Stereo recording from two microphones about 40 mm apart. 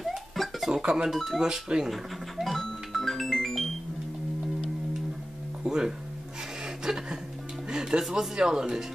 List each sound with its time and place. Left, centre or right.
0.0 s a sound: centre
0.7 s speech: centre
1.9 s music: centre
5.6 s speech: centre
6.8 s a sound: centre
7.7 s music: centre
8.0 s speech: centre